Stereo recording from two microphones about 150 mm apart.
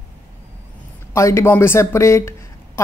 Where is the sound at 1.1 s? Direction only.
20° left (ahead or behind).